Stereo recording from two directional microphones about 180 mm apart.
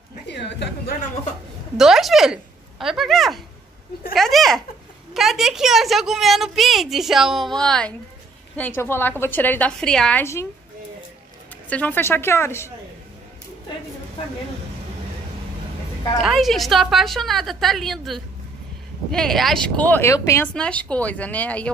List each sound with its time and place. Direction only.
0.3 s a sound: 70° left (ahead or behind)
1.8 s a woman's voice: centre (ahead or behind)
11.7 s speech: 10° left (ahead or behind)
16.2 s a woman's voice: centre (ahead or behind)